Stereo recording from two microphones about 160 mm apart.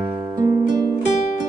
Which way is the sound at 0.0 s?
25° right (ahead or behind).